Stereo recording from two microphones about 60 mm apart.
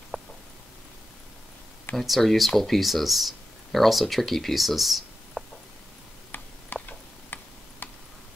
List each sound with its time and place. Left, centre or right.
0.1 s a sound: centre
2.0 s speech: centre
6.3 s tick-tock: left